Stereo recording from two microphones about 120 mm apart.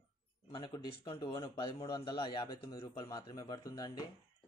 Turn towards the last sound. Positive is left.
turn(degrees=30)  # may be behind; listen again after turning